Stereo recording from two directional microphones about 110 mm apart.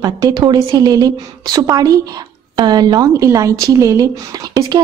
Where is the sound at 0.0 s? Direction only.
35° right (ahead or behind).